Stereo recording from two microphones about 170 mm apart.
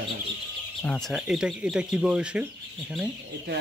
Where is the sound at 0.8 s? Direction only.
5° left (ahead or behind).